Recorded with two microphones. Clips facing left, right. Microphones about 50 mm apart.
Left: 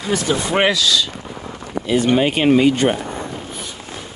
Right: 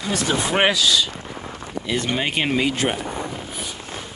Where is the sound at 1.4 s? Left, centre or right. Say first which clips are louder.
Left 5 dB; centre.